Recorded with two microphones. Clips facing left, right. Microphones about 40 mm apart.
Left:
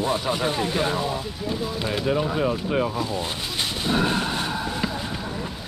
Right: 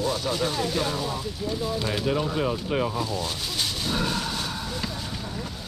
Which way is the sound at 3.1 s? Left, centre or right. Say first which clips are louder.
Left 2 dB; left.